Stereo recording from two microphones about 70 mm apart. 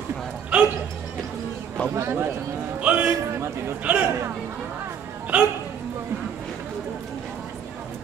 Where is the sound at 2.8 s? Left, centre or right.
Centre.